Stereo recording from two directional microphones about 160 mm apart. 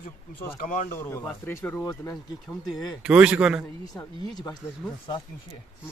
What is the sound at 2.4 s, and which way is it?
Speech, centre (ahead or behind).